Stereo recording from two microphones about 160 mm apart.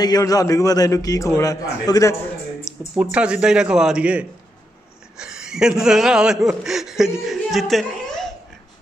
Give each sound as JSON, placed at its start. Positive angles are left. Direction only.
{"t": 0.0, "sound": "a man's voice", "side_deg": 25}
{"t": 2.9, "sound": "a man's voice", "side_deg": -10}